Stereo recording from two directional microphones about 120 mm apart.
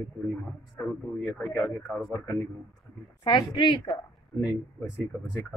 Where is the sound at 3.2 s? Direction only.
40° left (ahead or behind).